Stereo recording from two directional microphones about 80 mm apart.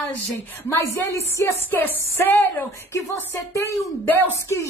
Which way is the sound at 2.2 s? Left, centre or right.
Left.